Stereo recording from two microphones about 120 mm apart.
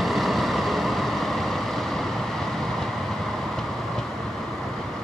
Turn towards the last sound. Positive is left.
turn(degrees=5)  # may be behind; listen again after turning